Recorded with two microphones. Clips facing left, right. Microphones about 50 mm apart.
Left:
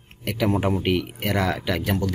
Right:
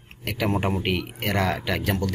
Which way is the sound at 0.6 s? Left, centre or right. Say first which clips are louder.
Left 3 dB; centre.